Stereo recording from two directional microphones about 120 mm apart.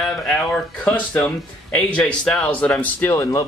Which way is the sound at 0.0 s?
5° left (ahead or behind).